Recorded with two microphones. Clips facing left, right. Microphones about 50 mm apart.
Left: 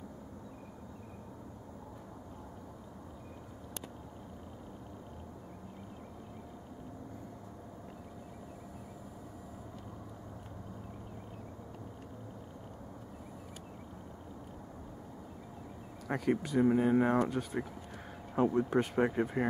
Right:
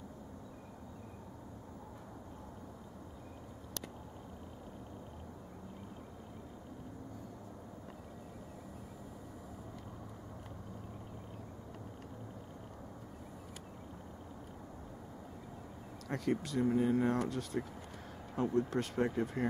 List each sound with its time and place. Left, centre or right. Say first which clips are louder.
16.1 s speech: left 4 dB; centre